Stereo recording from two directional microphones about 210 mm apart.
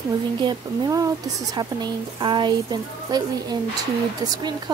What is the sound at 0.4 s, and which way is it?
A woman's voice, 20° right (ahead or behind).